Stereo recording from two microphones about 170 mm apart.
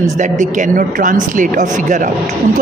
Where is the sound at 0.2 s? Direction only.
45° right (ahead or behind).